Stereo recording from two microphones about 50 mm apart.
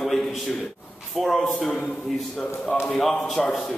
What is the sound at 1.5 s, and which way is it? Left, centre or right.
Speech, centre.